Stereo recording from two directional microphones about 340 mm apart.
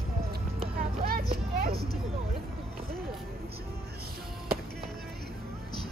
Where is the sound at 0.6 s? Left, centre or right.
Right.